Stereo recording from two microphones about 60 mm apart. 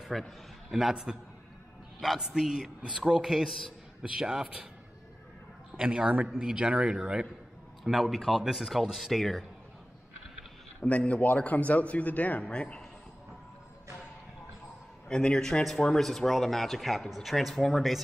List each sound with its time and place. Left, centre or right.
0.1 s speech: centre
0.7 s a man's voice: centre
5.8 s speech: centre
10.9 s a man's voice: left
15.0 s a man's voice: centre